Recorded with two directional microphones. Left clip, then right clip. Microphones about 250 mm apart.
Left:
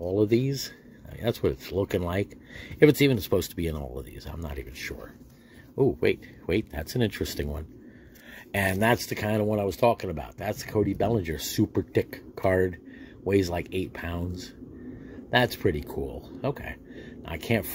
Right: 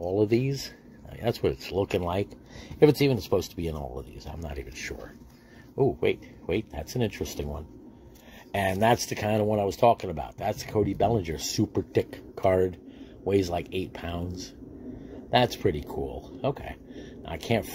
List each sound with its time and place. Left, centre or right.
0.0 s speech: centre